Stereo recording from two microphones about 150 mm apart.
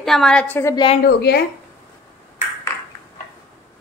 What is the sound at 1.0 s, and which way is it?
Speech, 90° left.